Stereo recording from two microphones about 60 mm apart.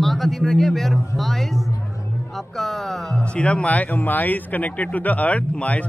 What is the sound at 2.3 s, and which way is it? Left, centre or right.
Music, centre.